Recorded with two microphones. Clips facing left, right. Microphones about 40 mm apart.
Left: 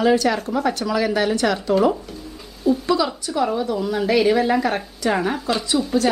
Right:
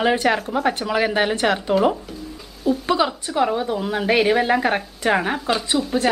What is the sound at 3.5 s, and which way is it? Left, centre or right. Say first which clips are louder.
Speech: left 1 dB; right.